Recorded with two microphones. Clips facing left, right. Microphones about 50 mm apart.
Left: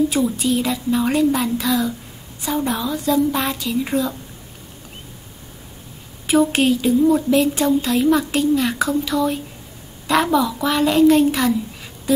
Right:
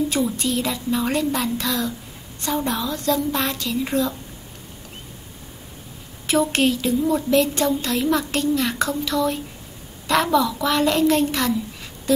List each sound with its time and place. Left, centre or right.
0.1 s speech: centre
6.2 s speech: centre